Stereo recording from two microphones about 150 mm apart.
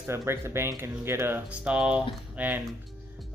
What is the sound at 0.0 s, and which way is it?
Speech, 15° right (ahead or behind).